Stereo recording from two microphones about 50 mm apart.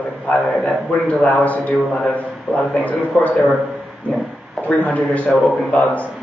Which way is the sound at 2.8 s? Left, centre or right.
Left.